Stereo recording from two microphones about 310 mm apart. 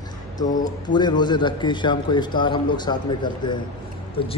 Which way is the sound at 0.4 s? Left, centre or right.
Centre.